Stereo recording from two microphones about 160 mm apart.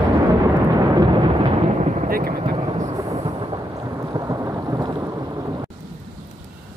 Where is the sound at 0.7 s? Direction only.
25° right (ahead or behind).